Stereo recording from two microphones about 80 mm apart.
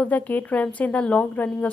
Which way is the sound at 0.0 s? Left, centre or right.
Centre.